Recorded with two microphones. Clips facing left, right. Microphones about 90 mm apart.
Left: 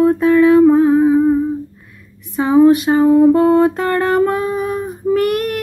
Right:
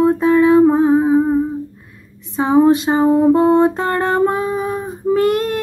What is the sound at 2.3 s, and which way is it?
Music, 25° right (ahead or behind).